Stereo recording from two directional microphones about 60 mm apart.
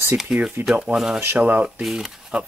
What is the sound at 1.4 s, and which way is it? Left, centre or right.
Speech, right.